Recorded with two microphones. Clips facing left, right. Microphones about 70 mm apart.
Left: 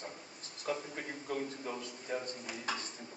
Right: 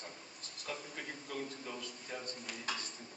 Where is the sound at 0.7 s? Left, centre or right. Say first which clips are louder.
Left 6 dB; left.